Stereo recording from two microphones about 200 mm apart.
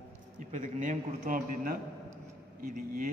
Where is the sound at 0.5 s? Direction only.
40° right (ahead or behind).